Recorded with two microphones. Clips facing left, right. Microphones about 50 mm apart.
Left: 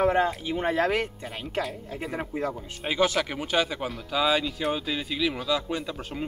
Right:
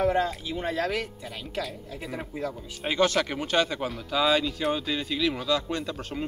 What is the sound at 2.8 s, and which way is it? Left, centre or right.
Speech, centre.